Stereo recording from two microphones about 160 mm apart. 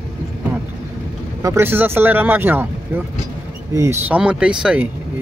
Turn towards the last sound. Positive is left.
turn(degrees=-5)  # may be behind; listen again after turning